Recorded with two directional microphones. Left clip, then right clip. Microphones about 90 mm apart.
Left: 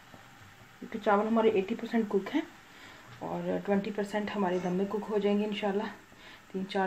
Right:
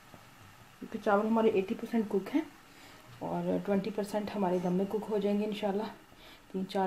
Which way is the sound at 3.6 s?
40° right (ahead or behind).